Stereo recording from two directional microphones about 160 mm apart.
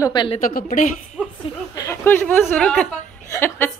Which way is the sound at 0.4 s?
65° left (ahead or behind).